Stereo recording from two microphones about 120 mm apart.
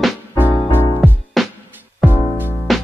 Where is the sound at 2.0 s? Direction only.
15° right (ahead or behind).